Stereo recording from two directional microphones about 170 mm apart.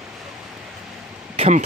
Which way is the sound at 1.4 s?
40° right (ahead or behind).